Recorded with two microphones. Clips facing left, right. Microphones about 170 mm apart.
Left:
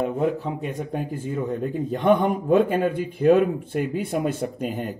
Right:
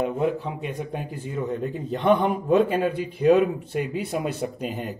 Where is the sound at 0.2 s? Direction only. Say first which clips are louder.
Left 1 dB; 40° left (ahead or behind).